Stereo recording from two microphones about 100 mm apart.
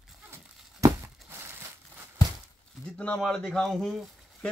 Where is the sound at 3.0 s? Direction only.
10° left (ahead or behind).